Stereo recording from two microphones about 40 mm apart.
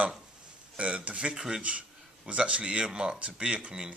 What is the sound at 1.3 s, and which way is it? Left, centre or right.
Speech, centre.